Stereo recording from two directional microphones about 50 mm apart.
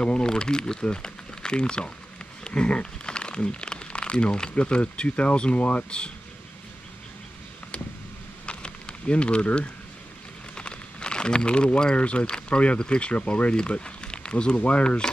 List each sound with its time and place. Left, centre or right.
0.0 s speech: centre
8.5 s a sound: left
10.5 s speech: centre